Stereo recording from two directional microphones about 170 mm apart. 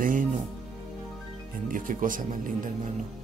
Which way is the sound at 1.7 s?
50° right (ahead or behind).